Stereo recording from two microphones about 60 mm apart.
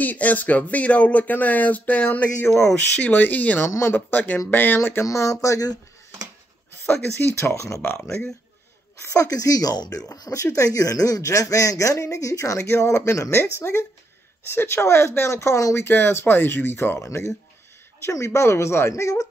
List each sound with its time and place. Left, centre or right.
0.0 s speech: left
2.4 s speech: left
2.8 s speech: left
3.6 s speech: left
3.9 s speech: left
5.0 s speech: left
7.2 s speech: left
9.1 s speech: left
15.8 s speech: left
18.1 s speech: left